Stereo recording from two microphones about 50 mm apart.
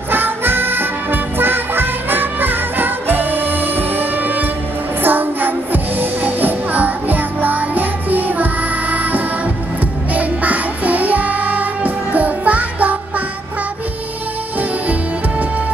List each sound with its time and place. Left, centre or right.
0.1 s music: right
10.1 s music: right